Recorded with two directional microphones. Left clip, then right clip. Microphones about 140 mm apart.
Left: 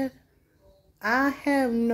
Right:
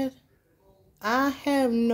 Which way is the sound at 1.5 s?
15° right (ahead or behind).